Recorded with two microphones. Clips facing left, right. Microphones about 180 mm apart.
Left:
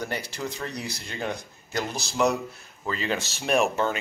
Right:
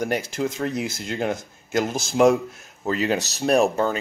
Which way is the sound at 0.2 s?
50° right (ahead or behind).